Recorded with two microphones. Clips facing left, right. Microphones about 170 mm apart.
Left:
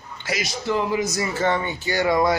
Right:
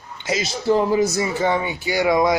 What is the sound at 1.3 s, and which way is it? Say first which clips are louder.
Speech: right 2 dB; 10° right (ahead or behind).